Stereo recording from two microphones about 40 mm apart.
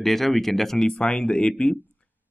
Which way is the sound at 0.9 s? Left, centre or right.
Left.